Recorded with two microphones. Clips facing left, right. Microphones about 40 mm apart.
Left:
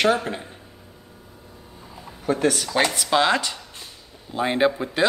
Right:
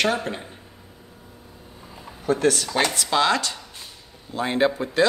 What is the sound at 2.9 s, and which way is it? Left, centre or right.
Speech, centre.